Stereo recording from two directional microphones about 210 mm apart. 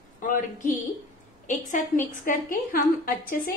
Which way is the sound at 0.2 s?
35° left (ahead or behind).